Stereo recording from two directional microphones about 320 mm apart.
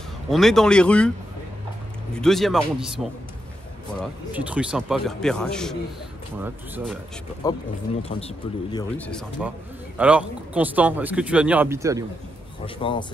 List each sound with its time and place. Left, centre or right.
0.3 s speech: centre
2.1 s speech: centre
4.0 s speech: centre
7.4 s a man's voice: centre
8.9 s speech: centre
12.6 s speech: centre